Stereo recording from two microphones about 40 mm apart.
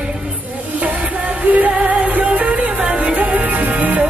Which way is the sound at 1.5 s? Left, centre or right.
Right.